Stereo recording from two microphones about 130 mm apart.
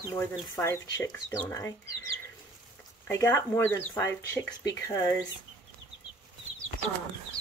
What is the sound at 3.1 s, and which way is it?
Speech, 20° left (ahead or behind).